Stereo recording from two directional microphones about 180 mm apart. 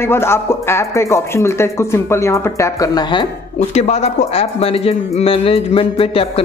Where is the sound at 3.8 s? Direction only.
35° left (ahead or behind).